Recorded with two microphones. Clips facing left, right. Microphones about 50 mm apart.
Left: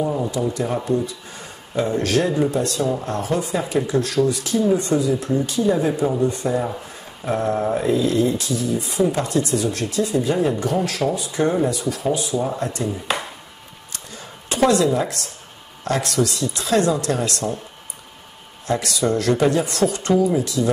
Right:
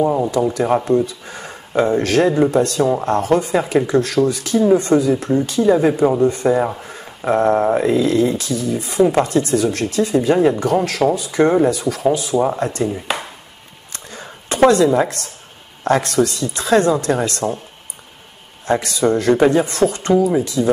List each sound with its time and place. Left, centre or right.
0.0 s speech: right
0.6 s speech: right
11.6 s speech: right
12.4 s speech: right
13.9 s a sound: right
15.8 s speech: right
18.7 s speech: right